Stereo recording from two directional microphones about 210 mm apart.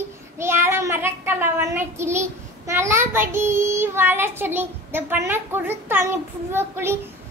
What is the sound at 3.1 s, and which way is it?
Child singing, 10° right (ahead or behind).